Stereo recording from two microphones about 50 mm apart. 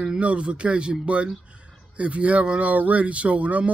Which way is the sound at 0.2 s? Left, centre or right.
Right.